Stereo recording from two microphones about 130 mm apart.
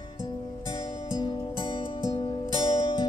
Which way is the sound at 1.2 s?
35° left (ahead or behind).